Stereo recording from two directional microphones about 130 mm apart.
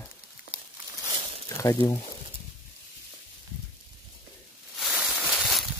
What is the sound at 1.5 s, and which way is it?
Speech, 25° left (ahead or behind).